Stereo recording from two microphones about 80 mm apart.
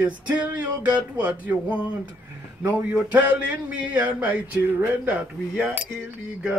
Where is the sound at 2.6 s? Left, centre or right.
Centre.